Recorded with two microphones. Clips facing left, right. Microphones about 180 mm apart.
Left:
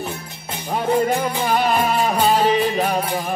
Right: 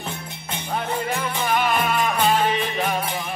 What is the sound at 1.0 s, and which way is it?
Music, 40° left (ahead or behind).